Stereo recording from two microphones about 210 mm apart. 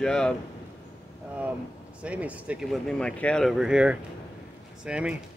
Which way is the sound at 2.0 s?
5° right (ahead or behind).